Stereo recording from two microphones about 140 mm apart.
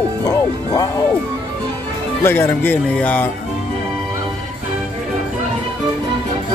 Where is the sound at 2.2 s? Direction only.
15° left (ahead or behind).